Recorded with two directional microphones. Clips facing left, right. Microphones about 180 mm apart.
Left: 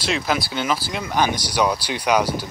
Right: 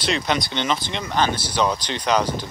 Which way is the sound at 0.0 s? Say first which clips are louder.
Even; 5° left (ahead or behind).